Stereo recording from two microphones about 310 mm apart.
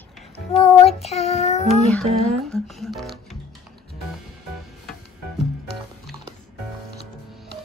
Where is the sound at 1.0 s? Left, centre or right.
Centre.